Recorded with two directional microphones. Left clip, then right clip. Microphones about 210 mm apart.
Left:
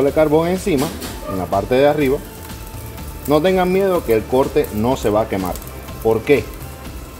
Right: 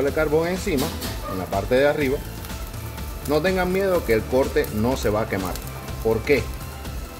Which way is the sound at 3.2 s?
25° left (ahead or behind).